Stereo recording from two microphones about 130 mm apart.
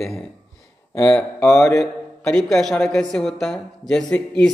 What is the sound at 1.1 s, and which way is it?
Speech, 15° left (ahead or behind).